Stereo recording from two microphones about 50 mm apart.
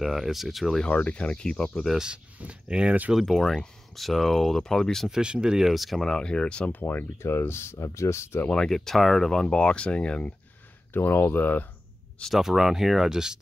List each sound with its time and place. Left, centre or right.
0.0 s speech: centre
0.8 s speech: left
2.4 s speech: right
3.3 s speech: centre
5.1 s speech: centre
5.7 s speech: centre
6.0 s speech: centre
6.7 s speech: left
7.2 s speech: left
8.5 s speech: centre
10.9 s speech: left
12.4 s speech: centre